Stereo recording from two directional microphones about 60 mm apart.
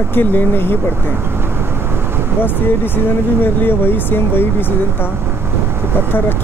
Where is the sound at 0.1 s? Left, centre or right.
Left.